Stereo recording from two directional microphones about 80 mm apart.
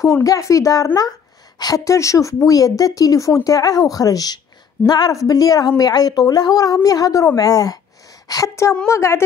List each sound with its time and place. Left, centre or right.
0.0 s a woman's voice: left
2.0 s a woman's voice: left